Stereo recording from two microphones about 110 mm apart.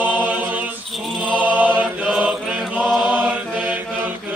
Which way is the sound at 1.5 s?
15° right (ahead or behind).